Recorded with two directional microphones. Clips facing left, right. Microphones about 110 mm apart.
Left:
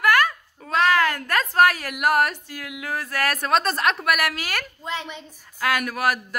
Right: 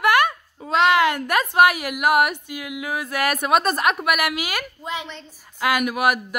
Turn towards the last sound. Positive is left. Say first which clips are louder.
# right 3 dB
turn(degrees=-10)  # may be behind; listen again after turning